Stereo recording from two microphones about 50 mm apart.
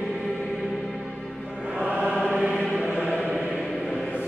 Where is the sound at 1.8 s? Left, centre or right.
Centre.